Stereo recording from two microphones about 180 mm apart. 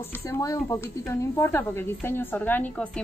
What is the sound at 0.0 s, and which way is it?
A woman's voice, 15° left (ahead or behind).